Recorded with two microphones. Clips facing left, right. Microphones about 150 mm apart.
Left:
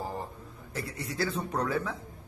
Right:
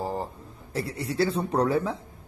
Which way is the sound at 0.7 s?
30° right (ahead or behind).